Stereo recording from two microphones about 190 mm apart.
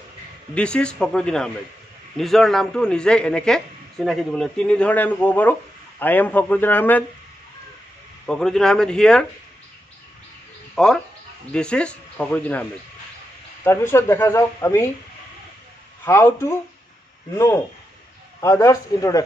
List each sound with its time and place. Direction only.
0.6 s a man's voice: 5° left (ahead or behind)
8.3 s a man's voice: 5° left (ahead or behind)
10.7 s a sound: centre (ahead or behind)
11.5 s a man's voice: 5° left (ahead or behind)
13.7 s speech: 15° left (ahead or behind)
16.1 s speech: 15° left (ahead or behind)
18.4 s speech: 15° left (ahead or behind)